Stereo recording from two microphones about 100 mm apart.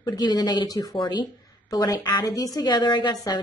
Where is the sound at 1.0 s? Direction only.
50° left (ahead or behind).